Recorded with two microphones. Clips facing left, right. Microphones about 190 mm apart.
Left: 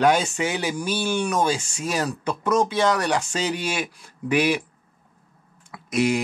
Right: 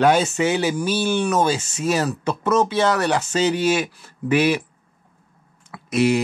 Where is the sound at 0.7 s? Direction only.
5° right (ahead or behind).